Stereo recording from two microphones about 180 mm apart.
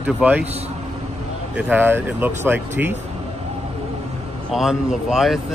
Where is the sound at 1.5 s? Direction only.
10° right (ahead or behind).